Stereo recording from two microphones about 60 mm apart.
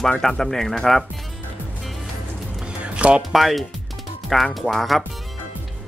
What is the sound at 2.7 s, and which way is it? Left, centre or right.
Music, right.